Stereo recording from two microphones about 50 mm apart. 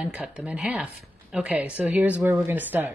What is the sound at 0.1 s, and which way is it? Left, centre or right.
A woman's voice, right.